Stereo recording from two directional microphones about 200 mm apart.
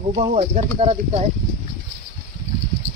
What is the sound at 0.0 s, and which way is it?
Speech, 35° right (ahead or behind).